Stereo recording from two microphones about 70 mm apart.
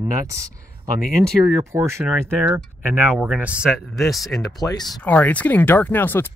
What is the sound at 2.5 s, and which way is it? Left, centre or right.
Speech, right.